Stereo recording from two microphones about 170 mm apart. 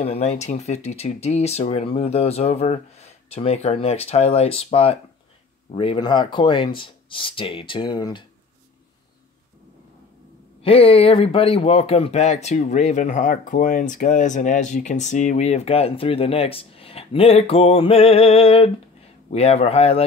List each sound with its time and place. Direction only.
0.0 s speech: 40° left (ahead or behind)
10.6 s speech: 35° left (ahead or behind)